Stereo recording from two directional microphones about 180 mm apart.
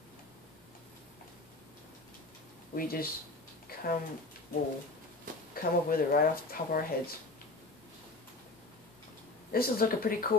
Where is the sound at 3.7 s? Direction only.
55° left (ahead or behind).